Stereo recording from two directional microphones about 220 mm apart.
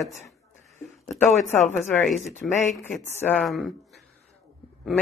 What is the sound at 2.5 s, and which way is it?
Speech, 35° left (ahead or behind).